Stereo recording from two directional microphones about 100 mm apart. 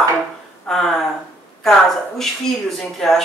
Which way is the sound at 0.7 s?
5° left (ahead or behind).